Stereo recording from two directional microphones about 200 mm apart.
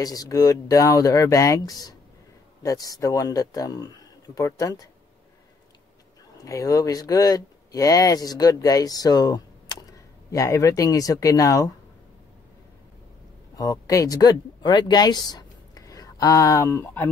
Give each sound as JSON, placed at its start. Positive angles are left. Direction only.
{"t": 0.0, "sound": "speech", "side_deg": 20}
{"t": 6.4, "sound": "speech", "side_deg": 15}
{"t": 13.6, "sound": "speech", "side_deg": 15}